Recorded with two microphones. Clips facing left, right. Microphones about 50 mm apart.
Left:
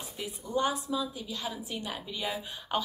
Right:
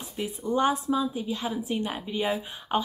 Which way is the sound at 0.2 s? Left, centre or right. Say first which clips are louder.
Right 5 dB; right.